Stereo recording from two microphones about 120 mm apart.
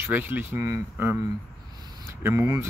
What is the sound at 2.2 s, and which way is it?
Speech, 25° right (ahead or behind).